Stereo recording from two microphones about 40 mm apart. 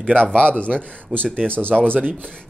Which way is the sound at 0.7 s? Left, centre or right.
Right.